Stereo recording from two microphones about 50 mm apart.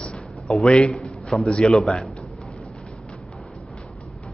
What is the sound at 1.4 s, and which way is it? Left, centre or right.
Speech, centre.